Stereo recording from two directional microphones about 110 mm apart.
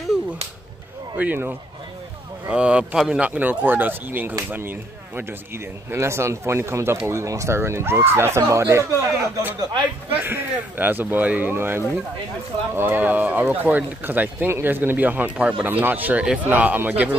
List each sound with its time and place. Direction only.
1.1 s a man's voice: 15° right (ahead or behind)